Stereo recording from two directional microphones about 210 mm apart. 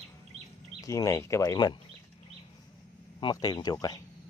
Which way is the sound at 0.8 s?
15° left (ahead or behind).